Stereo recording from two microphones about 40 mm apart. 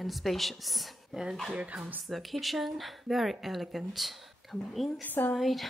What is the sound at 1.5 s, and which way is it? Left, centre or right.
Speech, right.